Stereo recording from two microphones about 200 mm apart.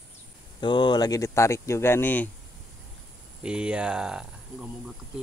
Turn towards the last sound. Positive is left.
turn(degrees=-5)  # may be behind; listen again after turning